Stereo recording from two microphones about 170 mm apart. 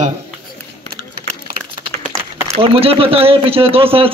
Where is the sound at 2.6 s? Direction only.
35° right (ahead or behind).